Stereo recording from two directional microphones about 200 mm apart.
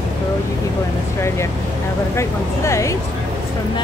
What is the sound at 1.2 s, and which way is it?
Speech, 15° left (ahead or behind).